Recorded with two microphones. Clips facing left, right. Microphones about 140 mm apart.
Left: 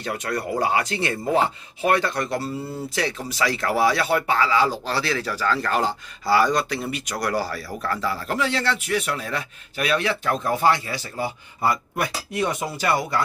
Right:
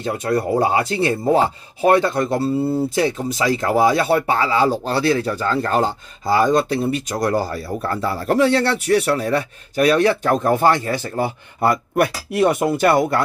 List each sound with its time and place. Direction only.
0.0 s speech: 25° right (ahead or behind); by 13.2 s 55° right (ahead or behind)